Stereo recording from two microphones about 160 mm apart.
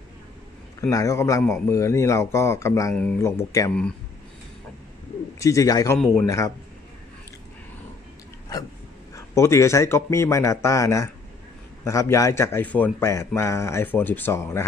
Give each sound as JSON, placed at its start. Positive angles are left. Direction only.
{"t": 0.7, "sound": "a man's voice", "side_deg": 20}
{"t": 5.4, "sound": "a man's voice", "side_deg": 20}
{"t": 9.1, "sound": "speech", "side_deg": 20}